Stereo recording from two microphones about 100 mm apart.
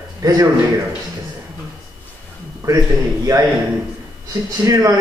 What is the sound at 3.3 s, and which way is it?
Speech, 40° right (ahead or behind).